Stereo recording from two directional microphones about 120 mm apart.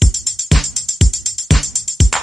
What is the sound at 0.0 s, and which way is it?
Music, centre (ahead or behind).